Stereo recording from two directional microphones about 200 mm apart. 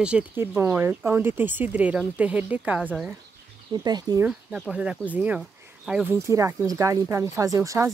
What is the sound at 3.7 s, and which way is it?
Speech, 20° right (ahead or behind).